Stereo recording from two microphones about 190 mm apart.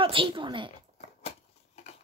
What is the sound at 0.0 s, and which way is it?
Speech, 25° right (ahead or behind).